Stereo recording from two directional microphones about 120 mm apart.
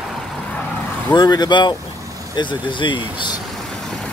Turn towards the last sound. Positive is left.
turn(degrees=40)  # may be behind; listen again after turning